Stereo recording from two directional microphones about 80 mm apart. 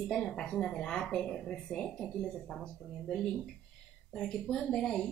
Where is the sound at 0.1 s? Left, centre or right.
Centre.